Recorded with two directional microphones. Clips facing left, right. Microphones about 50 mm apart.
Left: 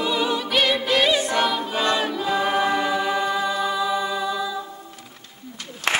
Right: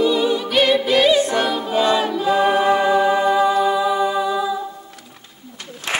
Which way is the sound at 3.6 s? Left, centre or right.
Centre.